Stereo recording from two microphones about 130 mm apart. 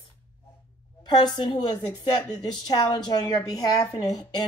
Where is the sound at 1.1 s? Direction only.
35° left (ahead or behind).